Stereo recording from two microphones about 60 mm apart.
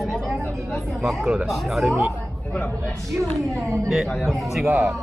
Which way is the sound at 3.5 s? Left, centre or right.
Right.